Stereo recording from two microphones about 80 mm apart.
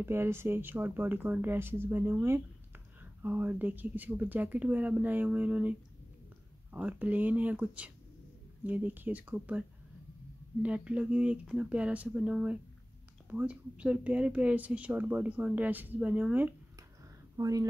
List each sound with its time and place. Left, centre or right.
0.0 s speech: right
10.6 s speech: centre
17.4 s a woman's voice: right